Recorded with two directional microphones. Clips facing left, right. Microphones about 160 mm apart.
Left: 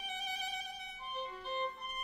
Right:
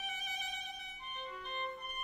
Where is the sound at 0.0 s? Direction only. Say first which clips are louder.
Left 3 dB; 35° left (ahead or behind).